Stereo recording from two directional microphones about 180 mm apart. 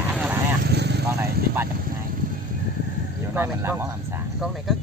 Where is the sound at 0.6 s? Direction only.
65° right (ahead or behind).